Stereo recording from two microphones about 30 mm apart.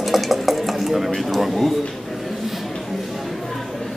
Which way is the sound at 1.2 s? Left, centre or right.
Centre.